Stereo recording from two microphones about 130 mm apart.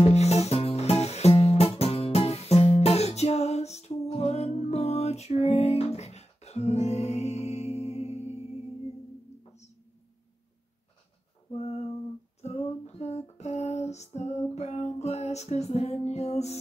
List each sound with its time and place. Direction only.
0.1 s music: 55° left (ahead or behind)
11.5 s a sound: 50° left (ahead or behind)
12.4 s female singing: 55° left (ahead or behind)